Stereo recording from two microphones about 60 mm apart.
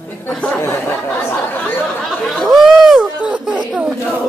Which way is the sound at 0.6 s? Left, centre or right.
Left.